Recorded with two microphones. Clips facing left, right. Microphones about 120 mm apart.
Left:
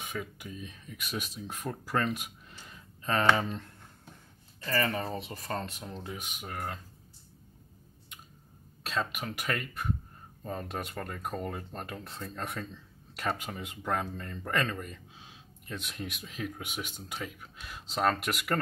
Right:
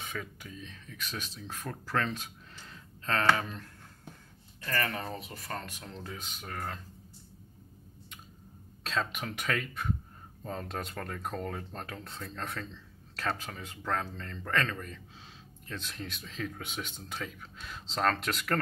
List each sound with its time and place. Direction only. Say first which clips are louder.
0.0 s speech: left 2 dB; 10° left (ahead or behind)
4.9 s speech: left 3 dB; centre (ahead or behind)
5.5 s speech: left 4 dB; 25° left (ahead or behind)
6.0 s speech: left 2 dB; 15° left (ahead or behind)
8.8 s speech: even; 5° left (ahead or behind)